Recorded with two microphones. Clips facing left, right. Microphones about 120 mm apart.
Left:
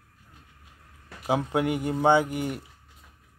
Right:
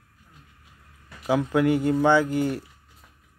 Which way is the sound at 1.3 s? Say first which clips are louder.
Right 4 dB; 25° left (ahead or behind).